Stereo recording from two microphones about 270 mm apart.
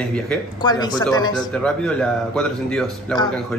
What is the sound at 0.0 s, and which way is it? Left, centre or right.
Speech, centre.